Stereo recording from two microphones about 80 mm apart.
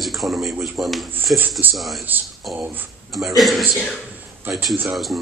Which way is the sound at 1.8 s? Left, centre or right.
Centre.